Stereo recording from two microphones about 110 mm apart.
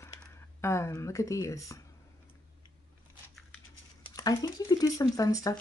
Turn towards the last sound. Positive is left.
turn(degrees=35)  # may be behind; listen again after turning